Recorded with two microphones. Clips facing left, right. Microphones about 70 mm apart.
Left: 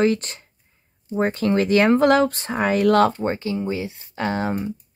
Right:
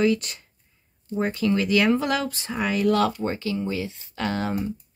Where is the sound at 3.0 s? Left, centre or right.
Left.